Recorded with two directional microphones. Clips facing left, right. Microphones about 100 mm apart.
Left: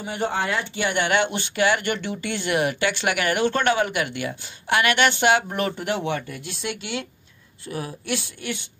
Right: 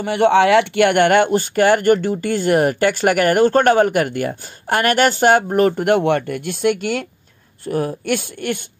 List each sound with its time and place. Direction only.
0.0 s speech: 75° right (ahead or behind); by 8.5 s 50° right (ahead or behind)